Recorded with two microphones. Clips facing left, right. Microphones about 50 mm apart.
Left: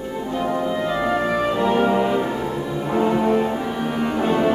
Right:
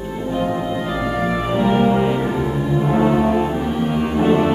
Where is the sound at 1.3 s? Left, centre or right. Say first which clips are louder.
Right 4 dB; centre.